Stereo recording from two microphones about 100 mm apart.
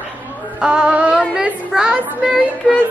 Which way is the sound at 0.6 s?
10° right (ahead or behind).